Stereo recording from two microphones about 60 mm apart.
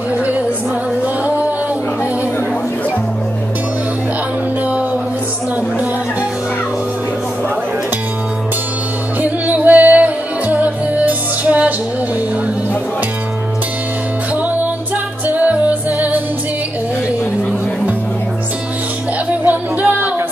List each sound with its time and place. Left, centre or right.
9.2 s music: right
14.3 s music: right
19.4 s music: right